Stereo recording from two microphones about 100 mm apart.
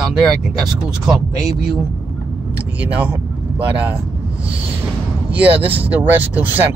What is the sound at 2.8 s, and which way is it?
Speech, 15° right (ahead or behind).